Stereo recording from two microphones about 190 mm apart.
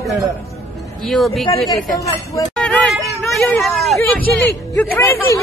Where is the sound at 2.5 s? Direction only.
5° left (ahead or behind).